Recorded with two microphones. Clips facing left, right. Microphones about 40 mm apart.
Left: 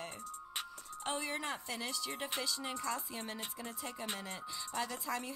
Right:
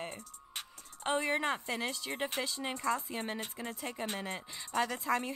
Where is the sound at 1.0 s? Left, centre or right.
Right.